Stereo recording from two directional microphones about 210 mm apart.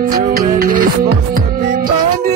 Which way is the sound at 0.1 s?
45° right (ahead or behind).